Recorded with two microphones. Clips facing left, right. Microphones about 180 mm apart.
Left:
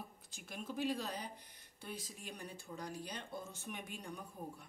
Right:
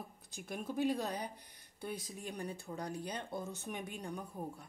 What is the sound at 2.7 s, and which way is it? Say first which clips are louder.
Speech: right 2 dB; 50° right (ahead or behind).